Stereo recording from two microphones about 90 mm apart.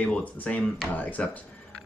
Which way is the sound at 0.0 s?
15° left (ahead or behind).